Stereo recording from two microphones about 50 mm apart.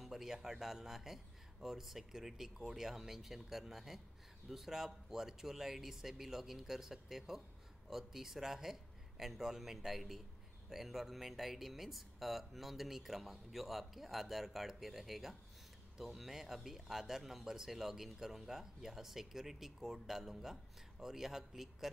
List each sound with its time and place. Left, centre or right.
0.0 s speech: centre